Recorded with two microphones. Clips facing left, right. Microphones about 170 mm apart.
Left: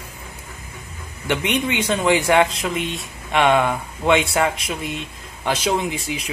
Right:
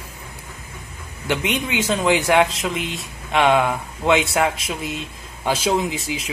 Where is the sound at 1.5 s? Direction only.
Centre (ahead or behind).